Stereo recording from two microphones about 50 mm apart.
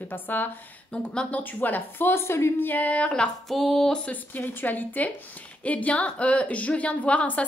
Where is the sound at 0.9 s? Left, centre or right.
Left.